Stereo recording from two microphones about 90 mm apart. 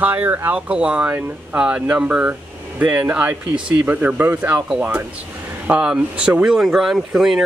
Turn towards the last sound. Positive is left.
turn(degrees=-5)  # may be behind; listen again after turning